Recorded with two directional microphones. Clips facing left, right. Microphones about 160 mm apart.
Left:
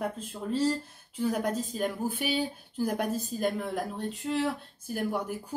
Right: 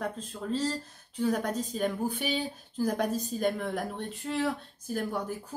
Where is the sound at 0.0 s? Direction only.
10° left (ahead or behind).